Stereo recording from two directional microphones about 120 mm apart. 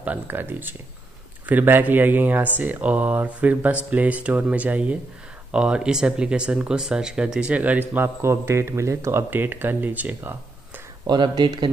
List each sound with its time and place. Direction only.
0.0 s speech: 15° right (ahead or behind)
11.1 s speech: 40° right (ahead or behind)